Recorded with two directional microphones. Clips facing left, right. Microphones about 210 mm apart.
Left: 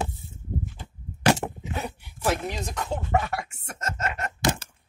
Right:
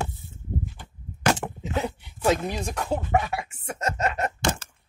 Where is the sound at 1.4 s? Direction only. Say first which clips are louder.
Left 1 dB; 30° left (ahead or behind).